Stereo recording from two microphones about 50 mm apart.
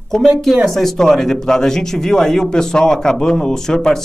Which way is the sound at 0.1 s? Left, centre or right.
Centre.